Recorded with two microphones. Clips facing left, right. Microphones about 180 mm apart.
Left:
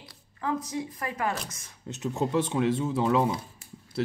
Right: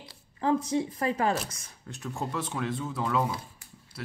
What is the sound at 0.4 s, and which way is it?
Speech, 30° right (ahead or behind).